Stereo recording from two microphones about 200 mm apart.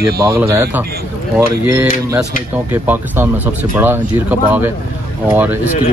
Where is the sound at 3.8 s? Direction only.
10° right (ahead or behind).